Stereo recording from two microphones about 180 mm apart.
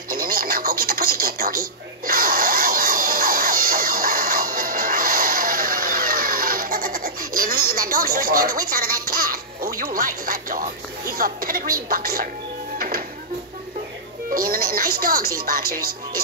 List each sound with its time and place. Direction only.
0.1 s television: 55° right (ahead or behind)
9.9 s music: 50° right (ahead or behind)
11.1 s speech: 50° right (ahead or behind)
12.7 s music: 50° right (ahead or behind)
14.3 s speech: 55° right (ahead or behind)